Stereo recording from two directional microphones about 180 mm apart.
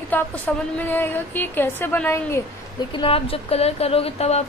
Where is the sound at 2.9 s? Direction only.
30° left (ahead or behind).